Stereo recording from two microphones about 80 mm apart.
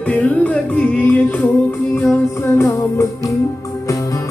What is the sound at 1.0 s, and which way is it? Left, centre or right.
Music, left.